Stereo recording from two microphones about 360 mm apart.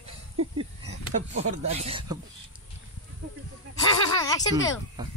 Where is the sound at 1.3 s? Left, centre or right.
Centre.